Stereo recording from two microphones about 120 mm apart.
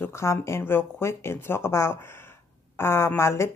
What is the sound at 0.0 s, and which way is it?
A woman's voice, 25° left (ahead or behind).